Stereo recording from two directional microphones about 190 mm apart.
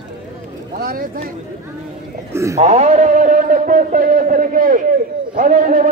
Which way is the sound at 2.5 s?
35° right (ahead or behind).